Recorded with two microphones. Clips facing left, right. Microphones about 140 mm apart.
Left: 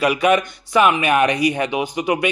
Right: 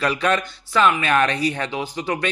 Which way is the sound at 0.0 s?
10° left (ahead or behind).